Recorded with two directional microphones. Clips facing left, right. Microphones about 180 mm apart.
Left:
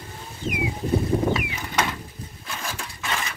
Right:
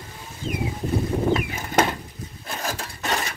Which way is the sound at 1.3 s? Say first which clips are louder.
Right 5 dB; 50° right (ahead or behind).